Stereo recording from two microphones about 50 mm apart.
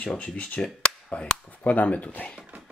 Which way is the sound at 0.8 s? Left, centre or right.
Centre.